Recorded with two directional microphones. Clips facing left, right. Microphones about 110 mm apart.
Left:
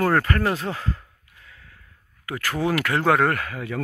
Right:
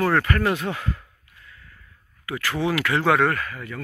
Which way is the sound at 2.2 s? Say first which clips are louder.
Even; 40° left (ahead or behind).